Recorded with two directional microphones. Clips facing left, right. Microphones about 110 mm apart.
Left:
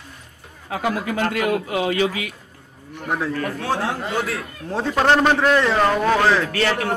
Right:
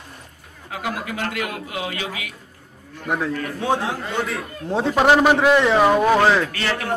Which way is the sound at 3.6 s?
20° right (ahead or behind).